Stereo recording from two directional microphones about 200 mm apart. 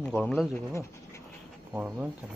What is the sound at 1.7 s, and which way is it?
Speech, 5° right (ahead or behind).